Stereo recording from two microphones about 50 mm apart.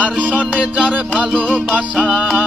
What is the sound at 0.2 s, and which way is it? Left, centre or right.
Music, right.